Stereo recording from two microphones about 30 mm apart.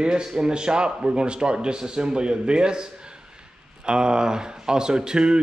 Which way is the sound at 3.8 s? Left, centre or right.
Right.